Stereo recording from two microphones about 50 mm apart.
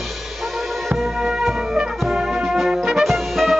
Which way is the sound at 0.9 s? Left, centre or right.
Centre.